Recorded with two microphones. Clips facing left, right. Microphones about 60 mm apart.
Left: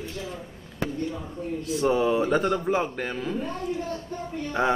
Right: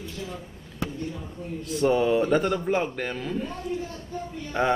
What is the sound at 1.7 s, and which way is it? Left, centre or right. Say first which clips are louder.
Speech: right 1 dB; centre.